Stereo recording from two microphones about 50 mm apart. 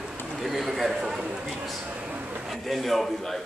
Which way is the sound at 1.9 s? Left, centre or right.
Right.